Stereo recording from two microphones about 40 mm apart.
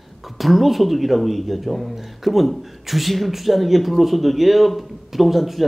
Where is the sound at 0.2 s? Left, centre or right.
Centre.